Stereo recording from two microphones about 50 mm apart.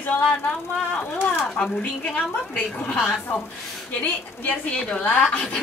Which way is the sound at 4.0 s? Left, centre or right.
Left.